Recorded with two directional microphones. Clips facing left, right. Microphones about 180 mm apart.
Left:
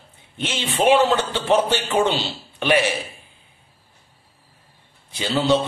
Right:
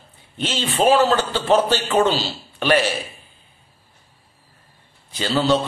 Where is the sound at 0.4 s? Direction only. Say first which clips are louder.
Right 2 dB; 15° left (ahead or behind).